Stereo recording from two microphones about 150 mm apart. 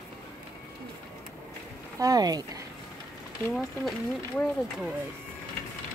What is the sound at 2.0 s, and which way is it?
Speech, 25° right (ahead or behind).